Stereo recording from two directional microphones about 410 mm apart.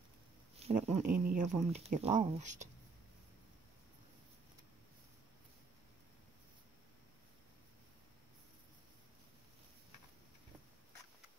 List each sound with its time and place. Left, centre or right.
0.6 s speech: centre